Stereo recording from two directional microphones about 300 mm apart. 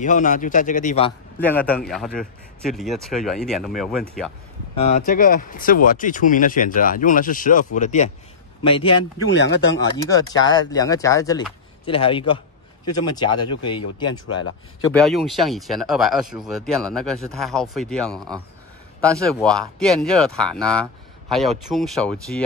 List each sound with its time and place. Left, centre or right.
0.0 s speech: left
1.4 s speech: centre
4.7 s speech: left
14.2 s speech: left
14.9 s speech: centre